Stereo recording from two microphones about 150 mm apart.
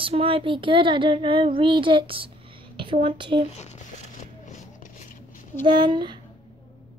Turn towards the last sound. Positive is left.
turn(degrees=-30)  # may be behind; listen again after turning